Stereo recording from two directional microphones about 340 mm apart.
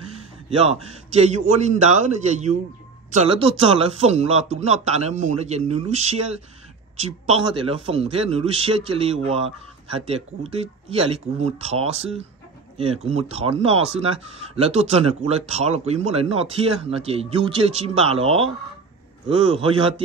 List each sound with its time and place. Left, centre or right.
0.5 s speech: centre
7.2 s speech: centre